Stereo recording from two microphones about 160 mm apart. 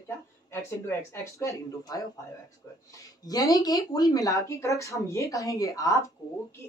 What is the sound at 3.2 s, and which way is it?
Speech, 20° left (ahead or behind).